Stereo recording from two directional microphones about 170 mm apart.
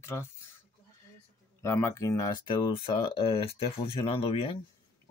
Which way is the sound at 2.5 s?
30° left (ahead or behind).